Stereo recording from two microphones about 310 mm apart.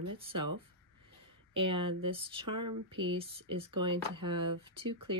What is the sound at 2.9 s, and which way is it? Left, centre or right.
Speech, centre.